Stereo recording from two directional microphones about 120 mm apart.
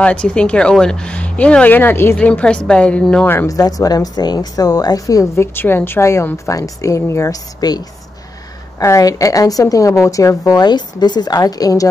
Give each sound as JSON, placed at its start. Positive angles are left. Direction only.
{"t": 0.0, "sound": "speech", "side_deg": 10}
{"t": 3.4, "sound": "a woman's voice", "side_deg": 30}